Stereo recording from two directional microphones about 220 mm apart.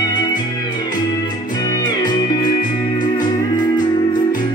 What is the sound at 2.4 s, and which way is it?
Music, 35° left (ahead or behind).